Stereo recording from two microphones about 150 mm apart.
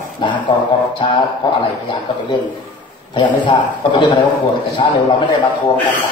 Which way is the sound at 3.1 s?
30° left (ahead or behind).